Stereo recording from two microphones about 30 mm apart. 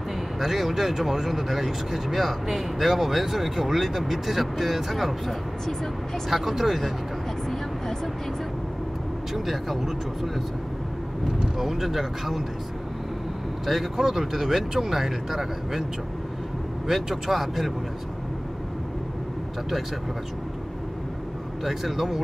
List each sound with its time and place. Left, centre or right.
0.4 s speech: centre
6.3 s speech: centre
9.3 s speech: centre
11.5 s speech: centre
13.7 s speech: centre
16.8 s speech: centre
21.6 s speech: centre